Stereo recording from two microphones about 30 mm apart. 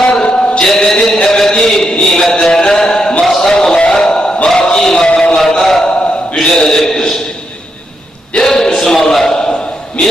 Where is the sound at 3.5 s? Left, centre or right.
Left.